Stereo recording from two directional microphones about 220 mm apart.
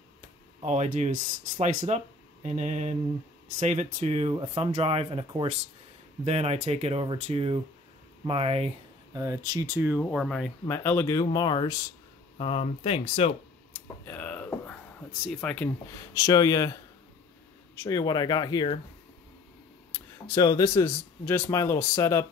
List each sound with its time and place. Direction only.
0.6 s speech: 30° right (ahead or behind)
9.1 s speech: 15° right (ahead or behind)
10.1 s speech: 5° left (ahead or behind); by 13.3 s 25° left (ahead or behind)
14.0 s a sound: 10° left (ahead or behind)
16.2 s speech: 15° left (ahead or behind)
17.7 s speech: 15° left (ahead or behind)
20.2 s speech: 15° left (ahead or behind)